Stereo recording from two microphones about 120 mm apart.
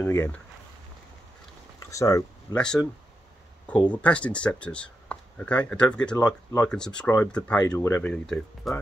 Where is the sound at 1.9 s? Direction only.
25° left (ahead or behind).